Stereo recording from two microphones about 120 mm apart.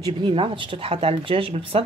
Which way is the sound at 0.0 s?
45° right (ahead or behind).